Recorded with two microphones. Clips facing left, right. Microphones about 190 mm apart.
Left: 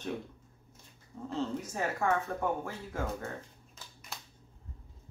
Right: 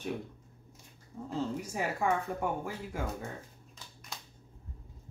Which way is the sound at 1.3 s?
15° right (ahead or behind).